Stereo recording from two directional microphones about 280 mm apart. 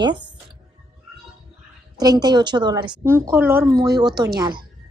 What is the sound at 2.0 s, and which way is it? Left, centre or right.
A woman's voice, centre.